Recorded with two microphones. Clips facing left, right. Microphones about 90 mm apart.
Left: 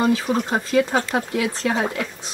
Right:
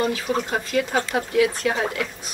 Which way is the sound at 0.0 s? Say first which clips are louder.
Left 3 dB; 25° left (ahead or behind).